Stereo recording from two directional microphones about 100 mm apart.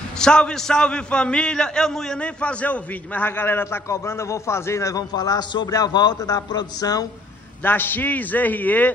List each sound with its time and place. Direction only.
0.2 s a man's voice: 10° left (ahead or behind); by 7.1 s 40° left (ahead or behind)
7.6 s a man's voice: 20° left (ahead or behind)